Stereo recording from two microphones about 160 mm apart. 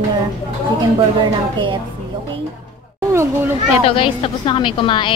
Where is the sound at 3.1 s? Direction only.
15° right (ahead or behind).